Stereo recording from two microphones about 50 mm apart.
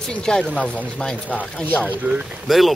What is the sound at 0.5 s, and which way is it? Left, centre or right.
Speech, left.